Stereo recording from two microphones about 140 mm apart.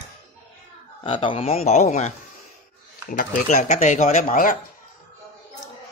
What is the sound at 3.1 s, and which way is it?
Speech, 70° left (ahead or behind).